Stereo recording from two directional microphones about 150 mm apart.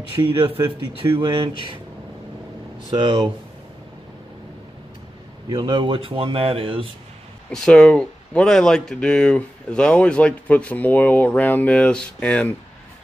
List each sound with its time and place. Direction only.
0.2 s speech: 25° right (ahead or behind)
3.0 s speech: 30° right (ahead or behind)
5.5 s speech: 35° right (ahead or behind)
7.5 s speech: 5° left (ahead or behind)